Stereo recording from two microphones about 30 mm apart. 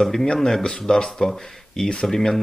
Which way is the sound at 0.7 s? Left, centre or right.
Centre.